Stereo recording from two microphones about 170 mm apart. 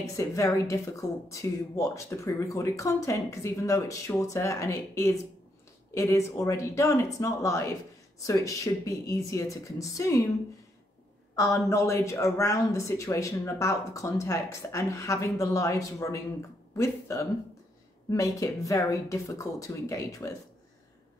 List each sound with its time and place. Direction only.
0.1 s a woman's voice: 20° left (ahead or behind)
11.3 s a woman's voice: 20° left (ahead or behind)